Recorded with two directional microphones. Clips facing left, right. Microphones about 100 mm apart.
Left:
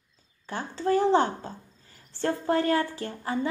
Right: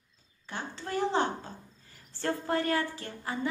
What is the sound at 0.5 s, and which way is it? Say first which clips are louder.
A woman's voice: left 10 dB; 35° left (ahead or behind).